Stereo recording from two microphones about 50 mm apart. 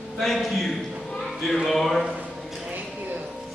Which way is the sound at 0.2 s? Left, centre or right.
Centre.